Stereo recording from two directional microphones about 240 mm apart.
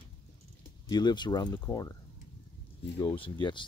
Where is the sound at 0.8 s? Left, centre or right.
Centre.